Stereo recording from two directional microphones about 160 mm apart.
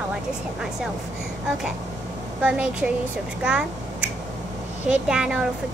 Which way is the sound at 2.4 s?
5° right (ahead or behind).